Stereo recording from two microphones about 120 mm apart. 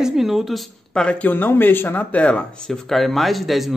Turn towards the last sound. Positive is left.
turn(degrees=0)  # may be behind; listen again after turning